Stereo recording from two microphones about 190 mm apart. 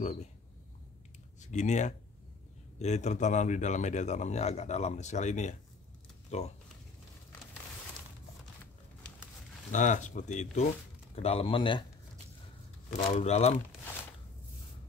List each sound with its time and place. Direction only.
0.0 s a man's voice: 35° left (ahead or behind)
1.4 s a man's voice: 40° left (ahead or behind)
9.7 s a man's voice: 40° left (ahead or behind)
12.9 s a man's voice: 35° left (ahead or behind)